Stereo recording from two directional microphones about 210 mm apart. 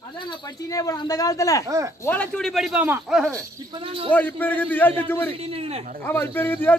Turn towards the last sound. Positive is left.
turn(degrees=10)  # may be behind; listen again after turning